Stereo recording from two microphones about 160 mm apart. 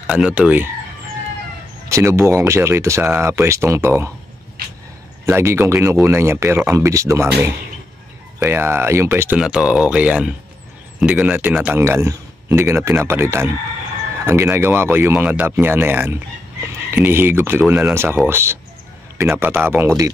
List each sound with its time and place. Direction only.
0.0 s speech: 5° right (ahead or behind)
1.9 s speech: 15° right (ahead or behind)
5.2 s speech: 15° right (ahead or behind)
8.4 s speech: 15° right (ahead or behind)